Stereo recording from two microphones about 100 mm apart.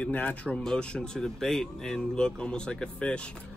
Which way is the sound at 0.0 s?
15° left (ahead or behind).